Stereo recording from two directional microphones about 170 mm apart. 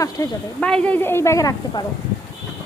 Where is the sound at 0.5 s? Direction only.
5° left (ahead or behind).